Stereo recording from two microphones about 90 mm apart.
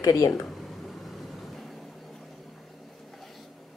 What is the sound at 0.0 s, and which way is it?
Speech, 40° left (ahead or behind).